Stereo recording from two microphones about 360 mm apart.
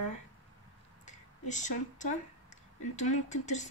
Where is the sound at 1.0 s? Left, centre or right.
Centre.